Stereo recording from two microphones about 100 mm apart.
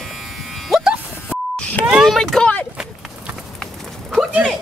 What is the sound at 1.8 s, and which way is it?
Vehicle, 10° right (ahead or behind).